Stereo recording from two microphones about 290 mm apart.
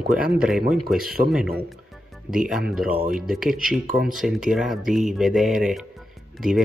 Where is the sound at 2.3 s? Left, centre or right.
Centre.